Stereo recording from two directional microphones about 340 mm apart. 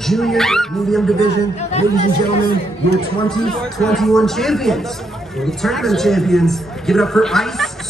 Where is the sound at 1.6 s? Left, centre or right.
Centre.